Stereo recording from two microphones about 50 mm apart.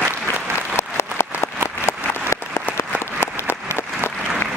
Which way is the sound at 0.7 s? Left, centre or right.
Left.